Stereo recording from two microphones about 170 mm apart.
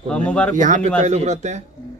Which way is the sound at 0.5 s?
50° right (ahead or behind).